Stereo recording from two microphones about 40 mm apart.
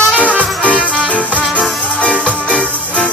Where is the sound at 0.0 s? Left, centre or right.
Left.